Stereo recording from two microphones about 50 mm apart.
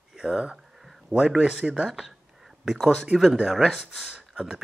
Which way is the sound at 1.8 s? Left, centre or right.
Centre.